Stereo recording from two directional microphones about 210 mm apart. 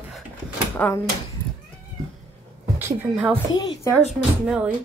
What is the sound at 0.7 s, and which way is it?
Speech, 10° left (ahead or behind).